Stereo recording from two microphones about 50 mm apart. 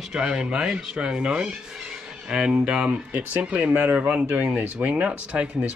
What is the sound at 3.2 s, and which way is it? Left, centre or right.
Speech, right.